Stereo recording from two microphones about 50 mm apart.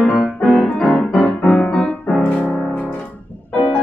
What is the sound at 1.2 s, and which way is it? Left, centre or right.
Music, left.